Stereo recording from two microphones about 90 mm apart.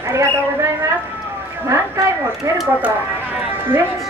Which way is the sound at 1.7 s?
35° right (ahead or behind).